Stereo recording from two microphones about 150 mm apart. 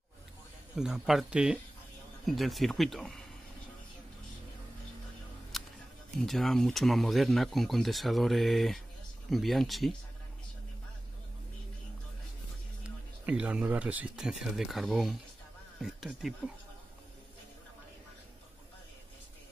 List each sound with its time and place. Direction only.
0.7 s speech: 5° right (ahead or behind)
5.5 s scissors: centre (ahead or behind)
6.2 s speech: centre (ahead or behind)
12.8 s speech: 5° right (ahead or behind)